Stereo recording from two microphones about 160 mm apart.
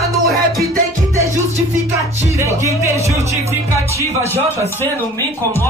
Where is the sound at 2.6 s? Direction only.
20° right (ahead or behind).